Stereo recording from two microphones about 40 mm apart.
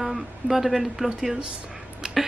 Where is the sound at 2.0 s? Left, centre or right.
Centre.